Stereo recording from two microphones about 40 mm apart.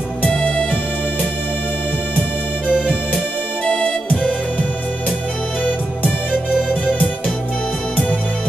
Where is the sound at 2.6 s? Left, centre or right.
Right.